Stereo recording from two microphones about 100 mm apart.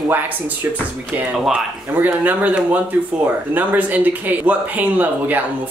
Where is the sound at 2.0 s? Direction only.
20° right (ahead or behind).